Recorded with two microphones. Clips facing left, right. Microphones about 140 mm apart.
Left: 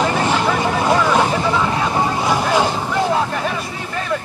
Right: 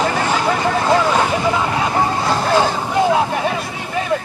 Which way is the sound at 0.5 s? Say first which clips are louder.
Even; 15° left (ahead or behind).